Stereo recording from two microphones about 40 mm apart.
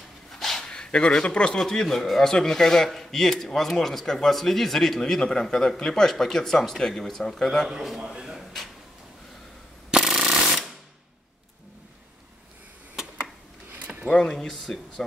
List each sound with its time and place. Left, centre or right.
0.3 s dog: centre
0.7 s speech: left
1.5 s a man's voice: centre
5.2 s a man's voice: left
8.0 s speech: centre
9.8 s a sound: centre
10.1 s ratchet: centre
13.9 s a sound: centre
14.3 s a man's voice: centre